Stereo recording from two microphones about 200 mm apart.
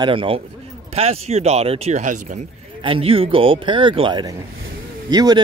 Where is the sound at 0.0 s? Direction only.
25° right (ahead or behind).